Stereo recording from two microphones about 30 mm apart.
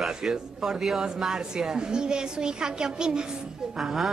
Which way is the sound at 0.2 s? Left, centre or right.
Centre.